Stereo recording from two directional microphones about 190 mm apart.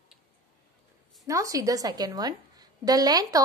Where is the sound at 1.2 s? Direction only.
15° right (ahead or behind).